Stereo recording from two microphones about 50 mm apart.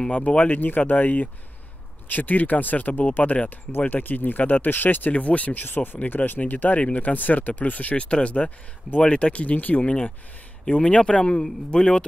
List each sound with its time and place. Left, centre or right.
0.1 s speech: left
0.5 s speech: left
5.1 s speech: left